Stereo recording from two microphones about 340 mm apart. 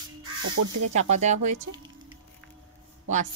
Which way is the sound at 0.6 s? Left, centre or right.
Right.